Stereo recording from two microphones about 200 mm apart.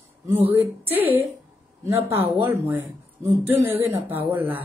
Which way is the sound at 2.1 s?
30° right (ahead or behind).